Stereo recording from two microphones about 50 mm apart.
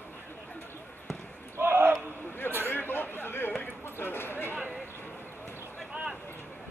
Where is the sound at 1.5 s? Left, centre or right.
Right.